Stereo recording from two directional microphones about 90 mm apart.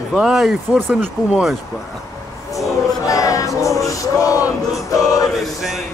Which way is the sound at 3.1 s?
40° left (ahead or behind).